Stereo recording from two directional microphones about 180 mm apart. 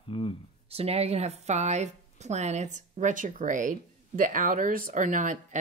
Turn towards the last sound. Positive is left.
turn(degrees=-45)  # may be behind; listen again after turning